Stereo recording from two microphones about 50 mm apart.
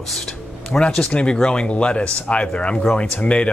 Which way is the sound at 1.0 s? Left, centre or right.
Left.